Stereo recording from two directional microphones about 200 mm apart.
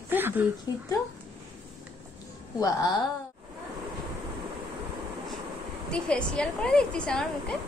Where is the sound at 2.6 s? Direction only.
20° left (ahead or behind).